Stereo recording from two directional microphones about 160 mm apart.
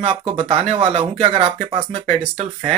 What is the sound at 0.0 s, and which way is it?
Speech, 35° right (ahead or behind).